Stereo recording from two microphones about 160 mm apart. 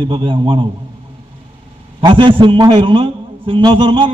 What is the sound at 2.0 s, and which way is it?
A man's voice, 30° right (ahead or behind).